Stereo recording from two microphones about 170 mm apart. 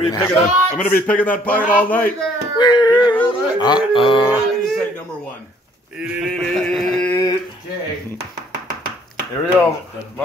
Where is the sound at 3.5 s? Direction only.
25° left (ahead or behind).